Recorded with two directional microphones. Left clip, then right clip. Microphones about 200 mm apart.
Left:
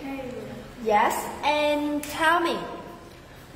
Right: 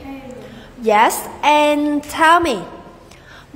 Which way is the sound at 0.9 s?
35° right (ahead or behind).